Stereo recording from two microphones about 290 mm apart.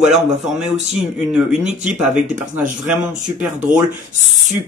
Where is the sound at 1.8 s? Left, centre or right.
Centre.